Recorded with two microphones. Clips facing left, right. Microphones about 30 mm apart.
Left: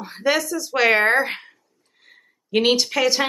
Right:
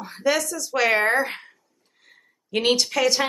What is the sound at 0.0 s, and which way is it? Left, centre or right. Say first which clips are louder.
Speech: left 2 dB; centre.